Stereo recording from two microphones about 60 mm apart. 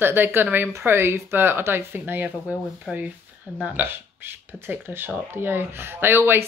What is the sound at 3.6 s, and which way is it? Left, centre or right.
Speech, right.